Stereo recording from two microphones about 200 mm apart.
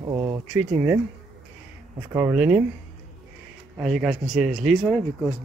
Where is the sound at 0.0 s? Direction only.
20° right (ahead or behind).